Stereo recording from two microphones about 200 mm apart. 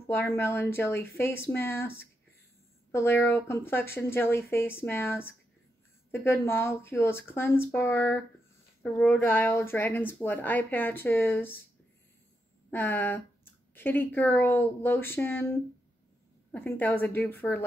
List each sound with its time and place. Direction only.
0.0 s speech: 10° left (ahead or behind)
12.7 s speech: 10° left (ahead or behind)
16.5 s speech: 10° left (ahead or behind)